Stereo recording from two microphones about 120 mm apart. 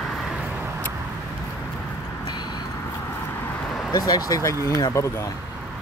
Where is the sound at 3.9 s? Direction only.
30° left (ahead or behind).